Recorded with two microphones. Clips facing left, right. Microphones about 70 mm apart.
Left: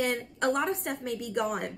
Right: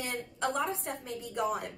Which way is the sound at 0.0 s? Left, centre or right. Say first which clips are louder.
Left 6 dB; left.